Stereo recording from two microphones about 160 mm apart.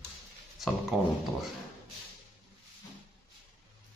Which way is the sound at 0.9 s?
5° right (ahead or behind).